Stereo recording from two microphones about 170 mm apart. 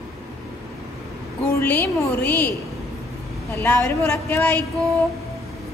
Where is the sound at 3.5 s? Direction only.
15° left (ahead or behind).